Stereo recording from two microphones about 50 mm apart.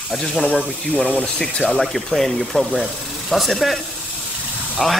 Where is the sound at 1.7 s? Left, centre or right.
Centre.